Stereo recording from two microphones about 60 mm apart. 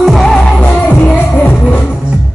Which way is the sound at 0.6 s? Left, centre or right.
Left.